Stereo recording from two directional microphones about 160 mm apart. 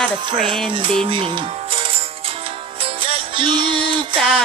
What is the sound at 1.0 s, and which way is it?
Music, 35° right (ahead or behind).